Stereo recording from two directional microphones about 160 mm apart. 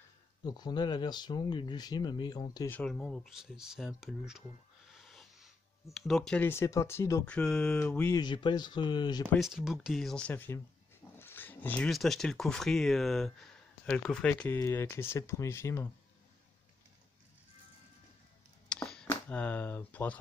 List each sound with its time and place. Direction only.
0.6 s speech: 25° left (ahead or behind)
2.8 s speech: centre (ahead or behind)
4.9 s wheeze: centre (ahead or behind)
5.9 s speech: centre (ahead or behind)
8.2 s speech: 30° left (ahead or behind)
9.4 s speech: centre (ahead or behind); by 15.9 s 15° left (ahead or behind)
18.7 s a sound: 5° left (ahead or behind)
19.0 s speech: 10° left (ahead or behind)